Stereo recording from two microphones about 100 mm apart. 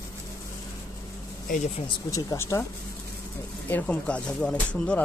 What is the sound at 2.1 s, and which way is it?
Speech, 35° left (ahead or behind).